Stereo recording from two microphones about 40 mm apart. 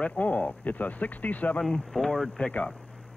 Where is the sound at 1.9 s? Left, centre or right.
Centre.